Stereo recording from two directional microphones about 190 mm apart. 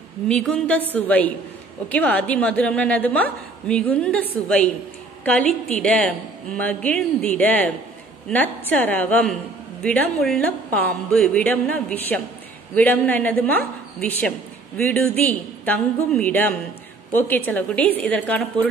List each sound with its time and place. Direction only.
0.3 s a woman's voice: 5° left (ahead or behind)